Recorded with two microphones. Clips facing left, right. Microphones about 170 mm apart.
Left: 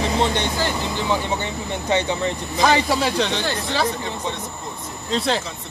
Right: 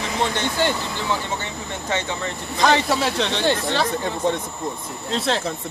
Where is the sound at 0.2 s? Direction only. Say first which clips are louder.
Left 1 dB; 20° left (ahead or behind).